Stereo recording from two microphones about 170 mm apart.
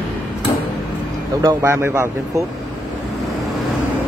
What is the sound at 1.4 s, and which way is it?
Speech, 15° right (ahead or behind).